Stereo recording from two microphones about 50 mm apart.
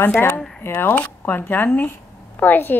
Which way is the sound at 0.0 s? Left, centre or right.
Left.